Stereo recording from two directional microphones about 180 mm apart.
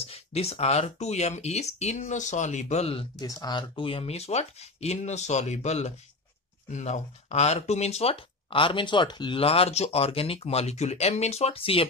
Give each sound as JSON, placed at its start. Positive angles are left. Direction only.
{"t": 0.0, "sound": "speech", "side_deg": 35}